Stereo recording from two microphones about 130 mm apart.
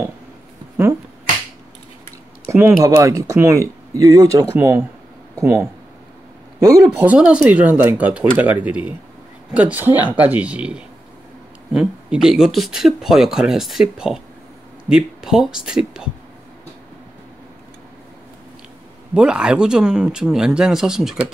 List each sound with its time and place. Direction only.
2.4 s speech: 20° right (ahead or behind)
7.0 s speech: 10° right (ahead or behind)
19.1 s speech: 5° right (ahead or behind)